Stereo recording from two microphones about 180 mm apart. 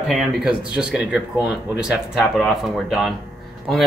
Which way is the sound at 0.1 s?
Centre (ahead or behind).